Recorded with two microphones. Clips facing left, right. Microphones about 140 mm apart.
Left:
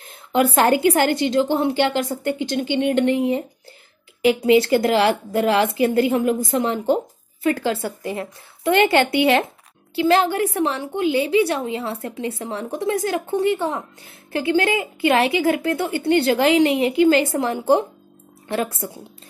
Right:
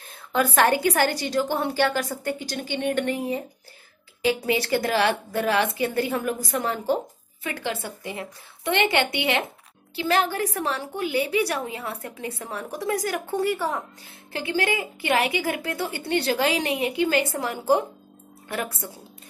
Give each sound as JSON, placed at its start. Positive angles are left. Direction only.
{"t": 0.1, "sound": "a woman's voice", "side_deg": 25}
{"t": 7.8, "sound": "speech", "side_deg": 40}
{"t": 9.1, "sound": "speech", "side_deg": -20}
{"t": 10.0, "sound": "a woman's voice", "side_deg": 30}